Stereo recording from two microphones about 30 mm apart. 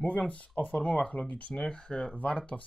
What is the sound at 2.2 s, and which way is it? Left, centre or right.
Speech, left.